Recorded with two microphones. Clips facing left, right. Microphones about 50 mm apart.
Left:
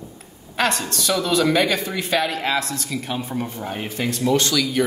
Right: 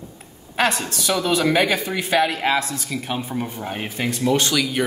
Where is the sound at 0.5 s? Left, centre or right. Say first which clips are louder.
Right 1 dB; centre.